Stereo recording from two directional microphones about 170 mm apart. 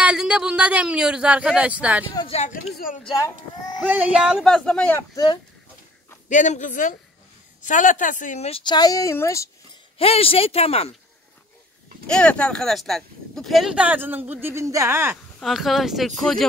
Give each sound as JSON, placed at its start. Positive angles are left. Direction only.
{"t": 0.0, "sound": "speech", "side_deg": -5}
{"t": 2.1, "sound": "speech", "side_deg": 35}
{"t": 2.7, "sound": "speech", "side_deg": 55}
{"t": 3.8, "sound": "speech", "side_deg": -10}
{"t": 5.1, "sound": "speech", "side_deg": 25}
{"t": 6.2, "sound": "speech", "side_deg": 45}
{"t": 9.9, "sound": "speech", "side_deg": 35}
{"t": 12.1, "sound": "speech", "side_deg": 5}
{"t": 15.4, "sound": "speech", "side_deg": 0}